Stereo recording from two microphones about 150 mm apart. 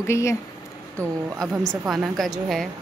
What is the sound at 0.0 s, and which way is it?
Speech, 20° left (ahead or behind).